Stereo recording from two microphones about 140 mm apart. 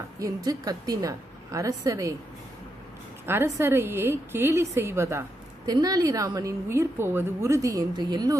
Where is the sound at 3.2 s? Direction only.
15° right (ahead or behind).